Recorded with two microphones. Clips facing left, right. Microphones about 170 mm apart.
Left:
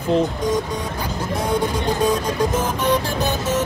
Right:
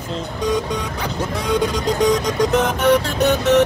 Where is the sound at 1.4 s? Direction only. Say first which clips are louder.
Right 2 dB; 80° right.